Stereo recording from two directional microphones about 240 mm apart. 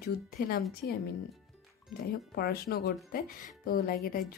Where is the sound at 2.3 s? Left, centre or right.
Left.